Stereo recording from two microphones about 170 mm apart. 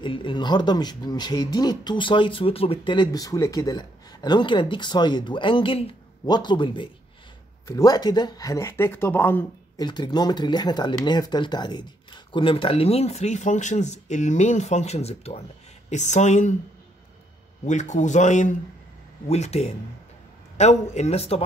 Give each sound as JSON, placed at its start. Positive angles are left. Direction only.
{"t": 0.0, "sound": "speech", "side_deg": 30}
{"t": 9.8, "sound": "speech", "side_deg": 25}
{"t": 17.6, "sound": "speech", "side_deg": 45}